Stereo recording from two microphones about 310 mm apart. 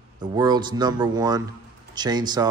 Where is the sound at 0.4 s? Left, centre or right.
Centre.